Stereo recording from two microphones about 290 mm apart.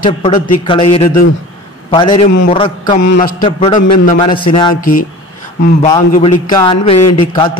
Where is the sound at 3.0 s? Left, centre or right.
Left.